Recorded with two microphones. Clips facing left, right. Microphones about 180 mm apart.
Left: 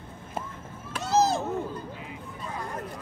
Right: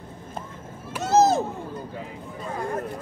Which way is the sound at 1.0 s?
45° right (ahead or behind).